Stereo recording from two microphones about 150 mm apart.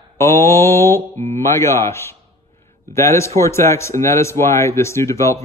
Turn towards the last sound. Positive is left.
turn(degrees=20)  # may be behind; listen again after turning